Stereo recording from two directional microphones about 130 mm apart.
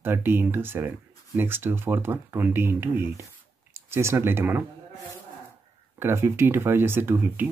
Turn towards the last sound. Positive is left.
turn(degrees=-15)  # may be behind; listen again after turning